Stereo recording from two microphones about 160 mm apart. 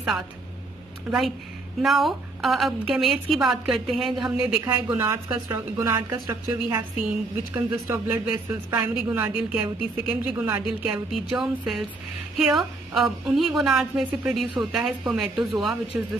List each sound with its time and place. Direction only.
1.8 s a woman's voice: centre (ahead or behind)
6.1 s speech: 25° right (ahead or behind)
7.5 s a woman's voice: 15° right (ahead or behind)